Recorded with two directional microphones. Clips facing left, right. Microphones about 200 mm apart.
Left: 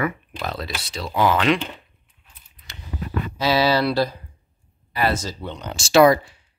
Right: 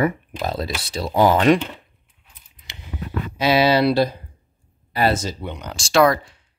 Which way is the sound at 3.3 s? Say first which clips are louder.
Right 3 dB; 20° right (ahead or behind).